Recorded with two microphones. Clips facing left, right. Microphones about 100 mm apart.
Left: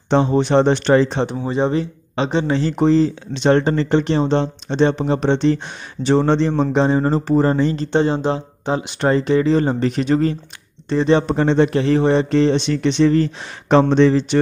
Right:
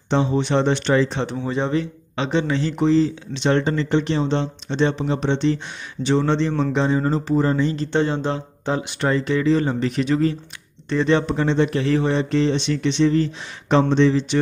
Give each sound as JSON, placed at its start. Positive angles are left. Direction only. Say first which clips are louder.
{"t": 0.1, "sound": "speech", "louder": "left 4 dB", "side_deg": 50}
{"t": 1.2, "sound": "speech", "louder": "left 4 dB", "side_deg": 20}
{"t": 1.7, "sound": "speech", "louder": "left 2 dB", "side_deg": 30}
{"t": 7.7, "sound": "speech", "louder": "left 3 dB", "side_deg": 25}
{"t": 9.0, "sound": "speech", "louder": "left 4 dB", "side_deg": 30}
{"t": 10.9, "sound": "speech", "louder": "left 3 dB", "side_deg": 25}
{"t": 11.2, "sound": "speech", "louder": "left 4 dB", "side_deg": 45}